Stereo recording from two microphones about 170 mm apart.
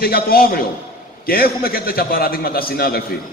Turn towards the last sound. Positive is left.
turn(degrees=65)  # may be behind; listen again after turning